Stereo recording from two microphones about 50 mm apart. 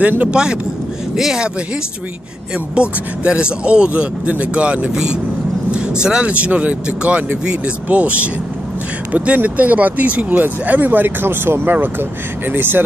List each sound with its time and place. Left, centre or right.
0.3 s speech: centre
2.7 s speech: right